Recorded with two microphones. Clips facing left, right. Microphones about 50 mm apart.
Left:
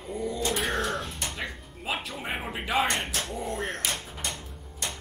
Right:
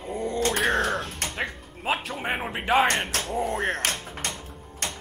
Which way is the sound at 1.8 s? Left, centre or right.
Right.